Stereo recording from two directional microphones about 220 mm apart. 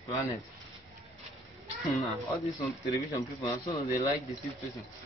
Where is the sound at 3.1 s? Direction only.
15° left (ahead or behind).